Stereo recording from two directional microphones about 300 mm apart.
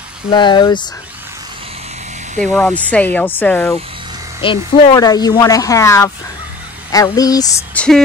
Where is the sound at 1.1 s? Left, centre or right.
Centre; by 2.4 s right.